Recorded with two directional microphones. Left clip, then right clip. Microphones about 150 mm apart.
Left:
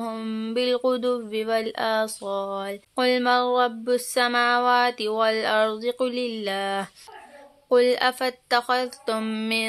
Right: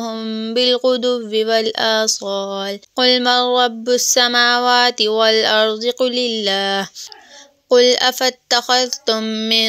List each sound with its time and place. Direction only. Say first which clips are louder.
0.0 s speech: right 7 dB; 25° right (ahead or behind)